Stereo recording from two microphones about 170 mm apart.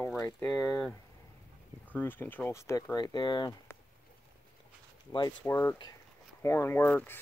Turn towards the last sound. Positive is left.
turn(degrees=10)  # may be behind; listen again after turning